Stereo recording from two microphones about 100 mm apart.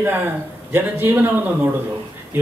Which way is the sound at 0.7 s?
20° right (ahead or behind).